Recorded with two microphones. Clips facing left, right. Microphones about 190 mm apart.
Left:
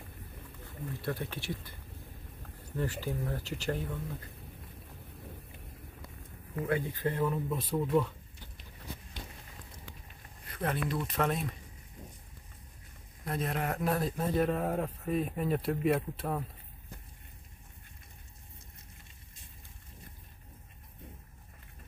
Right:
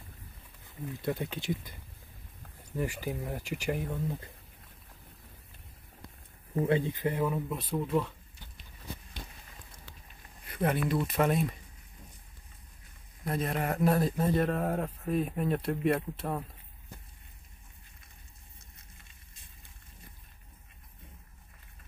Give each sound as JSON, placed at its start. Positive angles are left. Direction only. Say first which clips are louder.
{"t": 1.0, "sound": "speech", "louder": "right 4 dB", "side_deg": -15}
{"t": 2.8, "sound": "speech", "louder": "right 1 dB", "side_deg": -15}
{"t": 6.5, "sound": "speech", "louder": "right 4 dB", "side_deg": -25}
{"t": 10.5, "sound": "speech", "louder": "right 4 dB", "side_deg": -10}
{"t": 13.2, "sound": "a man's voice", "louder": "right 2 dB", "side_deg": 0}